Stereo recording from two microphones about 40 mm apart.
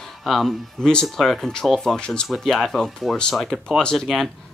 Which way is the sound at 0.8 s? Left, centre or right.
Centre.